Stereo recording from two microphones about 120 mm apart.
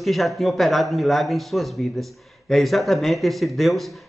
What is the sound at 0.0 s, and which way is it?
A man's voice, centre (ahead or behind).